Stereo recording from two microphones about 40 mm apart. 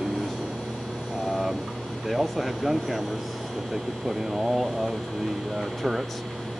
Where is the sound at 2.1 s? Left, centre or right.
Centre.